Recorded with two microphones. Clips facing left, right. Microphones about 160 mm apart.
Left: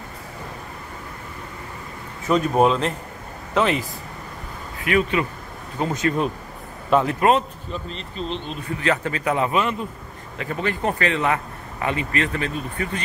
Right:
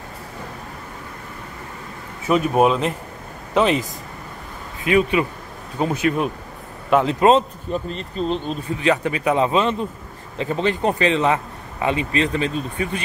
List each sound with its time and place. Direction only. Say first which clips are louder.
2.2 s a man's voice: right 1 dB; 10° right (ahead or behind)
4.8 s a man's voice: right 3 dB; 20° right (ahead or behind)
7.7 s speech: right 6 dB; 45° right (ahead or behind)
8.7 s a man's voice: right 3 dB; 15° right (ahead or behind)